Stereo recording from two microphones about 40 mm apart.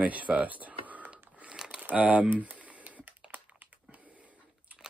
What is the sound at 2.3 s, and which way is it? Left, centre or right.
Typing, right.